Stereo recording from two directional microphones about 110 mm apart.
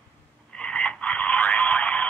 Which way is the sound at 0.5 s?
10° left (ahead or behind).